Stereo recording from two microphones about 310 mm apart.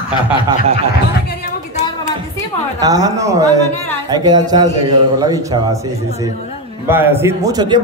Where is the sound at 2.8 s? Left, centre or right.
Centre.